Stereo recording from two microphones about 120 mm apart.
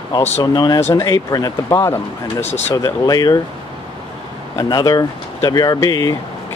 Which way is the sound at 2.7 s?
30° left (ahead or behind).